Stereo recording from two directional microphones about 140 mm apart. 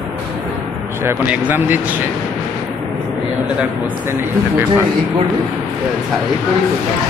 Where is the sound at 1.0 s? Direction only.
15° right (ahead or behind).